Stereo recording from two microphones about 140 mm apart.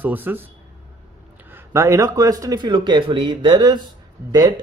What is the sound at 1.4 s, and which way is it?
A man's voice, 15° right (ahead or behind).